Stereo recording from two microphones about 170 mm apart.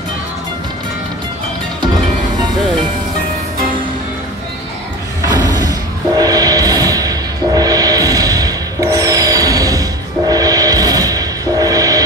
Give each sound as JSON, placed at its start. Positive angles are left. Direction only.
{"t": 5.3, "sound": "train", "side_deg": -25}